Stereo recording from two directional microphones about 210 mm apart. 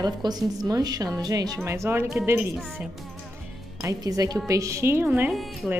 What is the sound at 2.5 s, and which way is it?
Speech, centre (ahead or behind).